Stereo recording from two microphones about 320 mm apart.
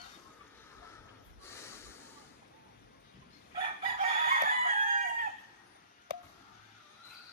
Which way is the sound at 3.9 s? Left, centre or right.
Right.